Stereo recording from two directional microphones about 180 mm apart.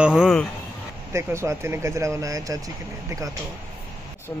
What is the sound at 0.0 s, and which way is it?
Speech, 5° right (ahead or behind).